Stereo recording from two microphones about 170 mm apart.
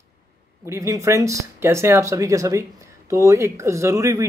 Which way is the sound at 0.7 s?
20° right (ahead or behind).